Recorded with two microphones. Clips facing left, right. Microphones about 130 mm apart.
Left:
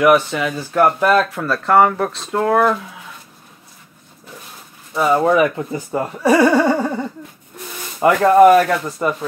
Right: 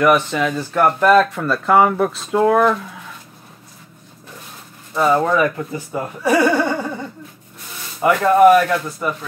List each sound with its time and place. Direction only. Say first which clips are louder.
0.0 s speech: left 1 dB; 5° left (ahead or behind)
4.9 s speech: left 1 dB; 5° left (ahead or behind); by 6.9 s 35° left (ahead or behind)
8.0 s speech: left 2 dB; 30° left (ahead or behind)